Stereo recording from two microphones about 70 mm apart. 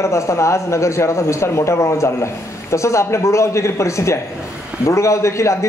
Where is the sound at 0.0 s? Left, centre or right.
Left.